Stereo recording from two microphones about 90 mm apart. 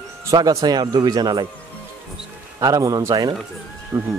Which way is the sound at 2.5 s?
40° right (ahead or behind).